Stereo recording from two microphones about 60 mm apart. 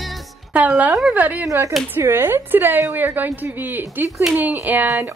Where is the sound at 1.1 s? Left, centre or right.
Right.